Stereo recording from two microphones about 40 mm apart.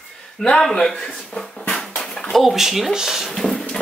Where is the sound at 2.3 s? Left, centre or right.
Centre.